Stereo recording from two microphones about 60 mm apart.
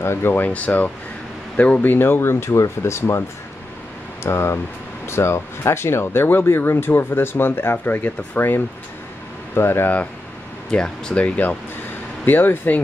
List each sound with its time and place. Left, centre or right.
0.0 s speech: left
10.7 s speech: centre; by 12.8 s left